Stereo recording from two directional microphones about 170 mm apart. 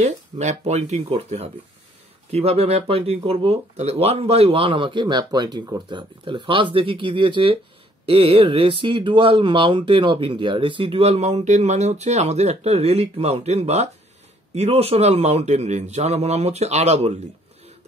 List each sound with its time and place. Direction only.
0.0 s speech: 40° right (ahead or behind)